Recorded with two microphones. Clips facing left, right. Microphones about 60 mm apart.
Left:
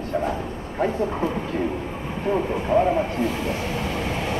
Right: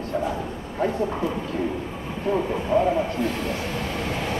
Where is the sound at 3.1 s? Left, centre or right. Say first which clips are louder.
Left 1 dB; left.